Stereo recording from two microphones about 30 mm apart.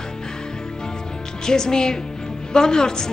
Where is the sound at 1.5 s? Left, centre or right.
Left.